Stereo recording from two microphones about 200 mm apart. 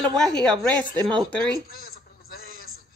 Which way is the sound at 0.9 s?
20° right (ahead or behind).